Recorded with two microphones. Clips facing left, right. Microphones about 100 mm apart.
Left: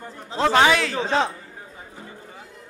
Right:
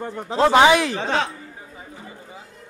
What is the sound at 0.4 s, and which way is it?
Speech, 15° right (ahead or behind).